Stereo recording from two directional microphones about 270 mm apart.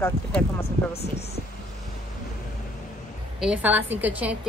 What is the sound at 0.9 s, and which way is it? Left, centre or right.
Speech, left.